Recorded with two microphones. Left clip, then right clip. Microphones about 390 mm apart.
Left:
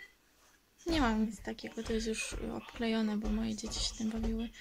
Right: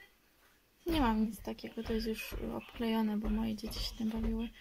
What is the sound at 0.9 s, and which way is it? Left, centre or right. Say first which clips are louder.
Speech: even; centre.